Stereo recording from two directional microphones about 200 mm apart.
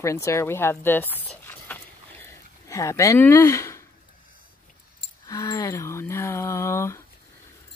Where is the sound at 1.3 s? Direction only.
10° left (ahead or behind).